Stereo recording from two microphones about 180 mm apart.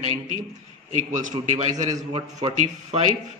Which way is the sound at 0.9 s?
45° right (ahead or behind).